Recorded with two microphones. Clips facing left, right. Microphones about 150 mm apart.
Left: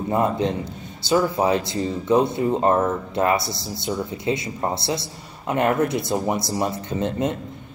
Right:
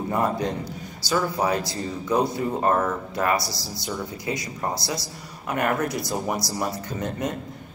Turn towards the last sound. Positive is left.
turn(degrees=25)  # may be behind; listen again after turning